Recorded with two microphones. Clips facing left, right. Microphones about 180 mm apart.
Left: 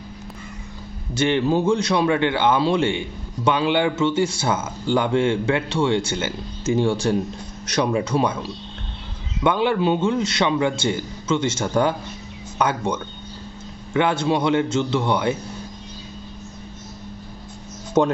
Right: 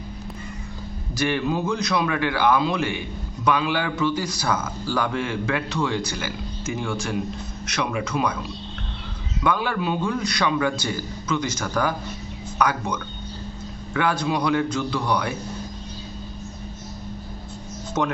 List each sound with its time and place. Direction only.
1.1 s a man's voice: 25° left (ahead or behind)
18.0 s speech: 30° left (ahead or behind)